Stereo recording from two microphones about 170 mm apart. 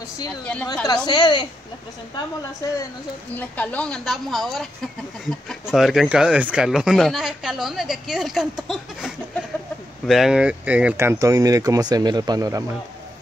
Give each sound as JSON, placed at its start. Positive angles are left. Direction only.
{"t": 0.8, "sound": "a woman's voice", "side_deg": 25}
{"t": 3.3, "sound": "speech", "side_deg": 10}